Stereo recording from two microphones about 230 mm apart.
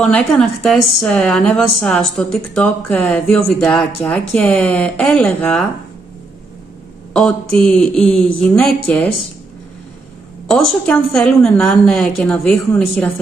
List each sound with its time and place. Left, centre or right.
0.0 s a woman's voice: centre
7.2 s a woman's voice: centre
10.5 s a woman's voice: centre